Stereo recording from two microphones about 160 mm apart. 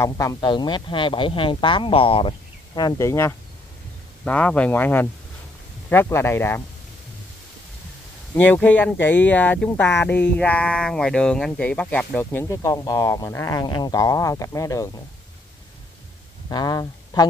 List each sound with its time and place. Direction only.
0.0 s speech: 20° left (ahead or behind)
8.5 s speech: 10° left (ahead or behind)
16.4 s speech: 25° left (ahead or behind)